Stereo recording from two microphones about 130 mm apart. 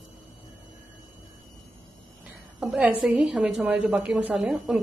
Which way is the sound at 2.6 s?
10° right (ahead or behind).